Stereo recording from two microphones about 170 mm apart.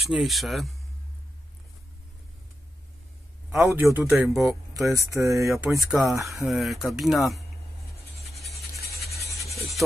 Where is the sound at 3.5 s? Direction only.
15° right (ahead or behind).